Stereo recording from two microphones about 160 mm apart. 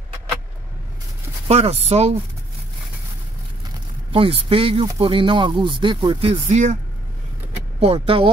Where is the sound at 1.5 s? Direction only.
40° right (ahead or behind).